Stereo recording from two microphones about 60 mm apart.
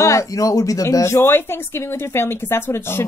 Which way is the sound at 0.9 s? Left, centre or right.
Left.